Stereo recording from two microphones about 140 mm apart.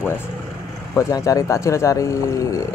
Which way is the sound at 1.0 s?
25° left (ahead or behind).